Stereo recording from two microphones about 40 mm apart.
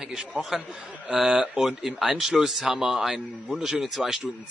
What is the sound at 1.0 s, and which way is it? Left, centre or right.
Speech, right.